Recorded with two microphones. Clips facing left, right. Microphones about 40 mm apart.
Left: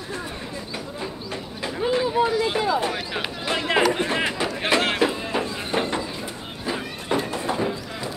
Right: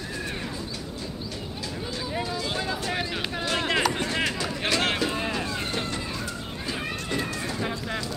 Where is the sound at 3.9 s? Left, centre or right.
Left.